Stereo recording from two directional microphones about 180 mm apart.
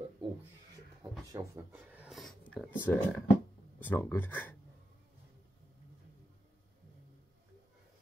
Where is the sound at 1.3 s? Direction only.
15° right (ahead or behind); by 4.6 s 10° left (ahead or behind).